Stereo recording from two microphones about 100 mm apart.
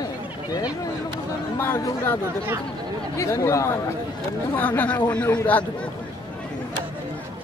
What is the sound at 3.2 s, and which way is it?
Speech, 30° left (ahead or behind).